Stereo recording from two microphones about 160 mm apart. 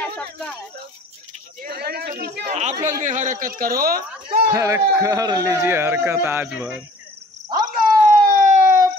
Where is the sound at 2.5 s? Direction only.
45° right (ahead or behind); by 4.0 s 65° right (ahead or behind).